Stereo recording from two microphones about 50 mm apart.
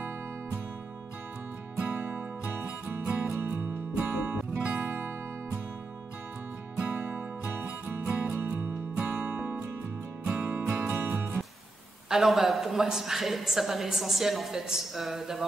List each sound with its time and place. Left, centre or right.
1.8 s music: right
4.9 s music: right
6.8 s music: right
8.3 s music: right
8.9 s music: right
10.5 s music: right
12.1 s a woman's voice: centre